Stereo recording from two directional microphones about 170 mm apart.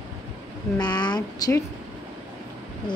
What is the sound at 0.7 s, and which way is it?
Speech, 25° left (ahead or behind).